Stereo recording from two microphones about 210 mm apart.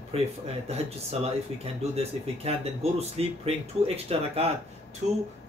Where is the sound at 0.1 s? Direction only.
30° right (ahead or behind).